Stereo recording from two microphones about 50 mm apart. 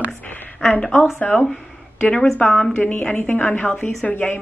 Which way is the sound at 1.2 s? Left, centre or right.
Left.